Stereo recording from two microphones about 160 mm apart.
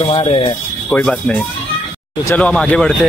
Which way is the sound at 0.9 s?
10° left (ahead or behind).